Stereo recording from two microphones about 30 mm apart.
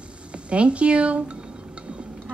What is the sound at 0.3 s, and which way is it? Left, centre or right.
Speech, right.